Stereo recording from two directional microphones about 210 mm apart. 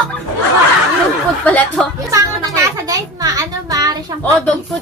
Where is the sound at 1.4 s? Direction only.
5° left (ahead or behind).